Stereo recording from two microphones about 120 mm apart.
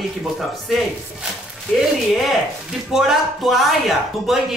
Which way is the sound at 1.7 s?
Centre (ahead or behind).